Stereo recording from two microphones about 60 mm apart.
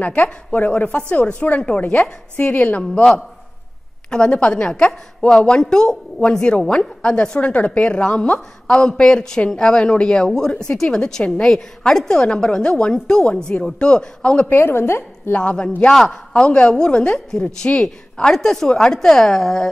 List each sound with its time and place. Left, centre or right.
0.0 s a woman's voice: left
14.5 s a woman's voice: left
15.3 s a woman's voice: centre